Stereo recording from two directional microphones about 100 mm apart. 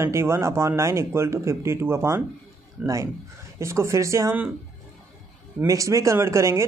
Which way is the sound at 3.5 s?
30° right (ahead or behind).